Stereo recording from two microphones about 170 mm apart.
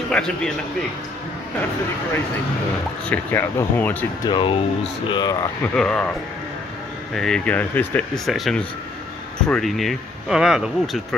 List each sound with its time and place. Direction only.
0.1 s a man's voice: 5° left (ahead or behind)
3.1 s speech: 10° left (ahead or behind)
4.3 s speech: 30° left (ahead or behind)
5.6 s speech: 5° left (ahead or behind)
7.2 s speech: 5° left (ahead or behind)